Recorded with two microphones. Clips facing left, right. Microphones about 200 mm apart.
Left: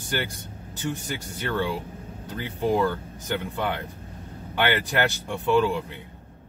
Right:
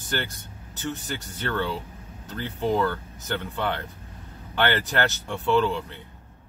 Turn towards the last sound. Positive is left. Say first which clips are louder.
# left 1 dB
turn(degrees=10)  # may be behind; listen again after turning